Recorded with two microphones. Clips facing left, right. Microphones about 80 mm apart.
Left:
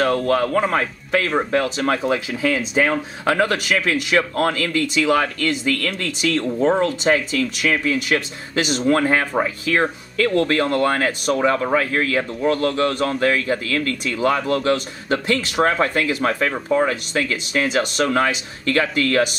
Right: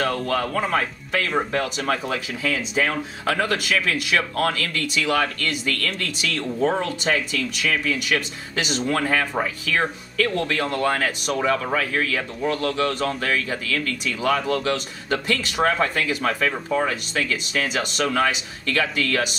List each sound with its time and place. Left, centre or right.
0.0 s a man's voice: left
0.4 s a man's voice: left
7.3 s a man's voice: left